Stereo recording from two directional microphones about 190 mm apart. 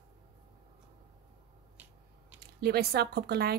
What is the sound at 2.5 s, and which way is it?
A woman's voice, 55° right (ahead or behind).